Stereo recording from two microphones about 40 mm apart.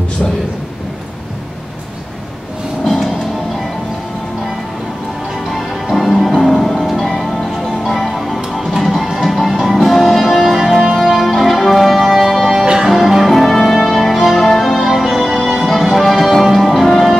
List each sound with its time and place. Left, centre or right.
2.8 s vehicle: centre
5.5 s music: centre
8.4 s music: centre
12.6 s music: centre